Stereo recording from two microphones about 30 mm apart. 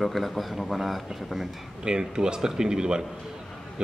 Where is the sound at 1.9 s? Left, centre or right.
Right.